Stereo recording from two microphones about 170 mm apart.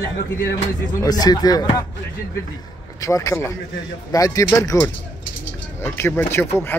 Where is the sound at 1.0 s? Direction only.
20° left (ahead or behind).